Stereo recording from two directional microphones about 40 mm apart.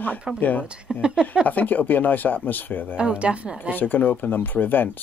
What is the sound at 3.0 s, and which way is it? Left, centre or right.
Speech, right.